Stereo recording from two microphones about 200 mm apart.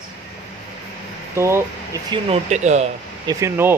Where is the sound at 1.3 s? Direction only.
15° right (ahead or behind).